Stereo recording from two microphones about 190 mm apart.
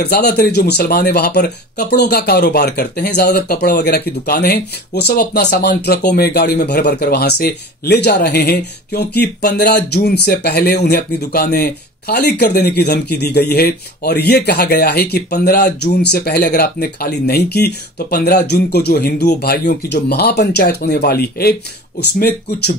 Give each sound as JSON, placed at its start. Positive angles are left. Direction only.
{"t": 0.0, "sound": "speech", "side_deg": 60}